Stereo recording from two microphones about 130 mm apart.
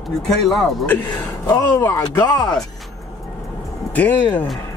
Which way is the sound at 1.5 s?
20° left (ahead or behind).